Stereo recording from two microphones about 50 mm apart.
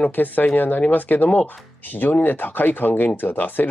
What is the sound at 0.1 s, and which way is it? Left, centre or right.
Speech, left.